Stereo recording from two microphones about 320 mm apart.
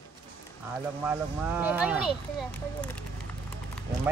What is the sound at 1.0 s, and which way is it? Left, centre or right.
Speech, centre.